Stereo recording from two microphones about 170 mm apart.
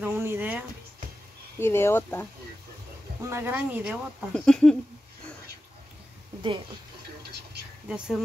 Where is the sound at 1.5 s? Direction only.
15° left (ahead or behind).